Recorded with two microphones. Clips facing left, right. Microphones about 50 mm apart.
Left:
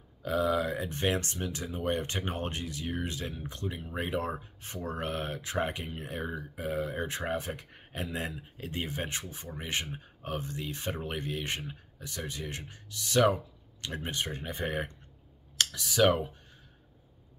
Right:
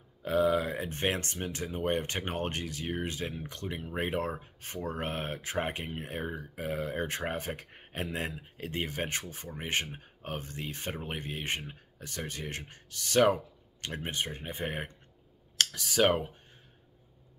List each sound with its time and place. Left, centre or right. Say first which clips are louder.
0.2 s speech: right 1 dB; right
3.3 s speech: even; right
3.8 s speech: right 1 dB; right
4.7 s speech: even; right
11.0 s speech: left 2 dB; right
11.6 s speech: left 2 dB; right
15.5 s speech: even; right